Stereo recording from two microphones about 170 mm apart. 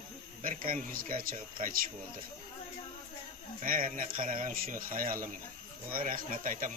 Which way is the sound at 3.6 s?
55° right (ahead or behind).